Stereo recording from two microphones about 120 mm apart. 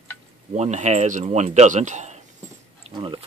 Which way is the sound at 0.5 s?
75° right (ahead or behind).